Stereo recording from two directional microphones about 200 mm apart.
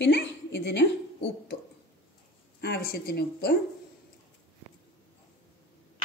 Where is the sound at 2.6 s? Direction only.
50° left (ahead or behind).